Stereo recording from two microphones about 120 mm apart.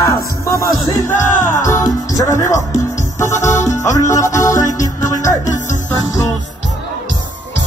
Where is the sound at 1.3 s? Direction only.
90° left.